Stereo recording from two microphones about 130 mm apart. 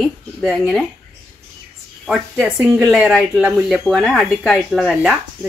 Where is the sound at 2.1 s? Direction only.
5° right (ahead or behind).